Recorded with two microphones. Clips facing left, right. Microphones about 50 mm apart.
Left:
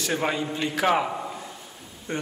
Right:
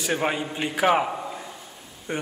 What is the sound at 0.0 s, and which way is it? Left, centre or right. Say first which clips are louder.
A man's voice: right 1 dB; centre.